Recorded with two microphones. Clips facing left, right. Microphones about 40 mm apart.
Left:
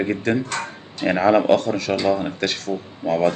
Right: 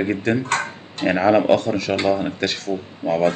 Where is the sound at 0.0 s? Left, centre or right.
Centre.